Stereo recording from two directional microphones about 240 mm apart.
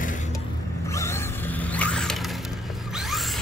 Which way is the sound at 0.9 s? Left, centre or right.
Centre.